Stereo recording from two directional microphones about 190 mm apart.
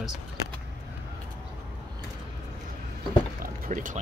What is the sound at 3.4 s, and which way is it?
Boat, 45° right (ahead or behind).